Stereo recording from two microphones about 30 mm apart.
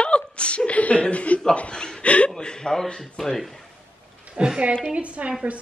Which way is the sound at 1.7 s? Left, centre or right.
Left.